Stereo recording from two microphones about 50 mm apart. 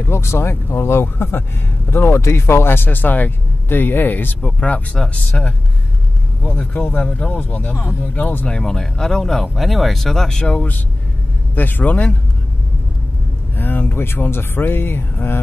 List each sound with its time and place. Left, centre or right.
0.0 s speech: left
5.1 s speech: left
6.5 s speech: left
7.5 s a man's voice: left
8.5 s speech: centre
11.5 s a man's voice: left
13.6 s speech: left